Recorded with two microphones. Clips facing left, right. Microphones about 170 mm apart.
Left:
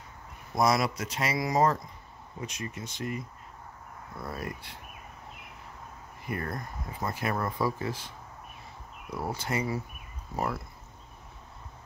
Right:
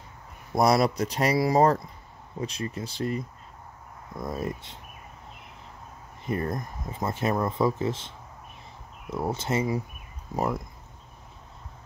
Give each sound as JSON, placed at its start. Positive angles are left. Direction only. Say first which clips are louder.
{"t": 0.6, "sound": "speech", "louder": "right 4 dB", "side_deg": -35}
{"t": 4.2, "sound": "speech", "louder": "right 6 dB", "side_deg": -20}
{"t": 6.2, "sound": "speech", "louder": "right 6 dB", "side_deg": -25}
{"t": 9.1, "sound": "speech", "louder": "right 5 dB", "side_deg": -25}